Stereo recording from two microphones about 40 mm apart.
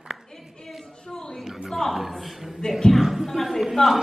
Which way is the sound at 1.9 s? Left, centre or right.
Centre.